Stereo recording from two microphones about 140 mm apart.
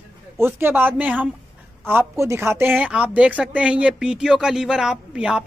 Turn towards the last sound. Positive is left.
turn(degrees=-5)  # may be behind; listen again after turning